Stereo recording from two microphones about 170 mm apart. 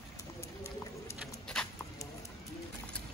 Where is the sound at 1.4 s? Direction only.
5° left (ahead or behind).